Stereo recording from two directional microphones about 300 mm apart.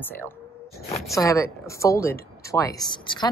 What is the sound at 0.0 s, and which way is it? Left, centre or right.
Speech, centre.